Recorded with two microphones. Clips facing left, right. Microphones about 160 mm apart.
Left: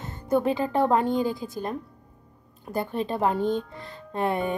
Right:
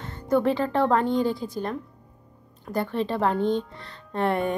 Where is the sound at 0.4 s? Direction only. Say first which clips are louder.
Right 1 dB; 10° left (ahead or behind).